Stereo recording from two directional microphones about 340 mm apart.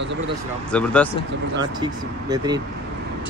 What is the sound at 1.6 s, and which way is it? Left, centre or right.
Speech, centre.